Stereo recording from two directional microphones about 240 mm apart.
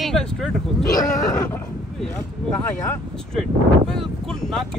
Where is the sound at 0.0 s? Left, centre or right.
Centre.